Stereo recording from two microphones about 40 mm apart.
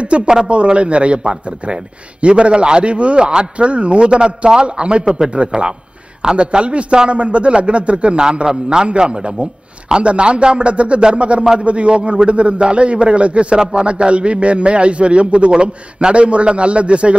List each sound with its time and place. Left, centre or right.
0.0 s a man's voice: right